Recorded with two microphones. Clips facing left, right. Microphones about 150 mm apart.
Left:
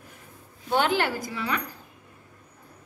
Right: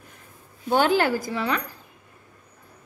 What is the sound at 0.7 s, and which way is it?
Speech, 40° right (ahead or behind).